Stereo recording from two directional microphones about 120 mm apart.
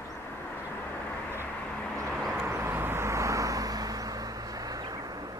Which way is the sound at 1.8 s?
5° left (ahead or behind).